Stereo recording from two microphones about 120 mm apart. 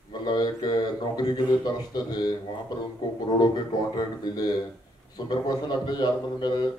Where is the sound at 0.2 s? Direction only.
35° left (ahead or behind).